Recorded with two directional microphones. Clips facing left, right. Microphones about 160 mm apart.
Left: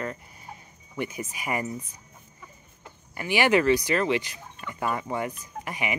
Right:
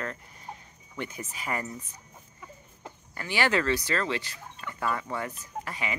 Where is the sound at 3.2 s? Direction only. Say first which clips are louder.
Left 5 dB; 15° left (ahead or behind).